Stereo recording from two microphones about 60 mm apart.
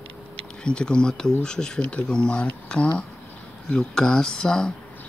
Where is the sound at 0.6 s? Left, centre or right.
Centre.